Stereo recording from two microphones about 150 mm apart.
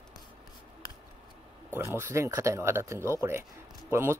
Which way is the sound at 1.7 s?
15° right (ahead or behind).